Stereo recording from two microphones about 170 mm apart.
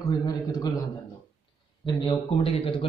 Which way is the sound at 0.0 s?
20° left (ahead or behind).